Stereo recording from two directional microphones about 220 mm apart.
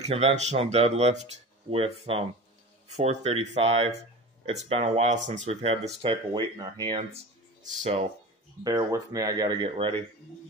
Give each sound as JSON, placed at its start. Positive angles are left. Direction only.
{"t": 0.0, "sound": "speech", "side_deg": -25}
{"t": 8.6, "sound": "speech", "side_deg": -15}